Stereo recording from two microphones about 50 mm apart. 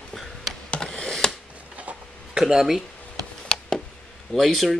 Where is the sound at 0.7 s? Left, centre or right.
Centre.